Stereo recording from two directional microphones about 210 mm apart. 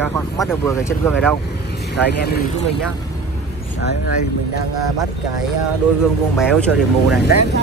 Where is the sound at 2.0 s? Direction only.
50° left (ahead or behind).